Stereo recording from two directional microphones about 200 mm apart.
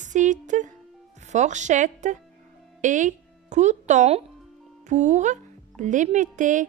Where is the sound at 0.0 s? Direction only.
40° right (ahead or behind).